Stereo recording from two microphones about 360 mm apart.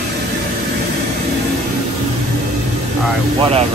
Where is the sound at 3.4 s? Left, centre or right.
Centre.